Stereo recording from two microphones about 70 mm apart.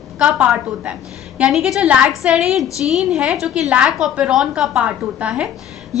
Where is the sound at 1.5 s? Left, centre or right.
Centre.